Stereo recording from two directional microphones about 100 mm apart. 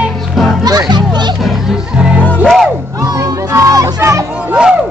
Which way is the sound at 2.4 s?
Centre (ahead or behind).